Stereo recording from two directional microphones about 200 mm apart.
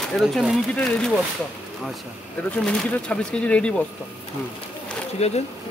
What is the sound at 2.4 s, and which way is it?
Speech, 5° left (ahead or behind).